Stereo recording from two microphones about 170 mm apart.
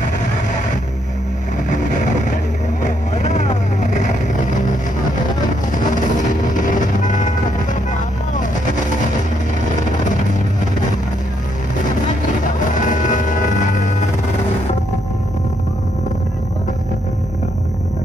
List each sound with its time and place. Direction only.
2.8 s vehicle: 45° left (ahead or behind)
5.9 s music: 50° left (ahead or behind)
12.8 s music: 50° left (ahead or behind)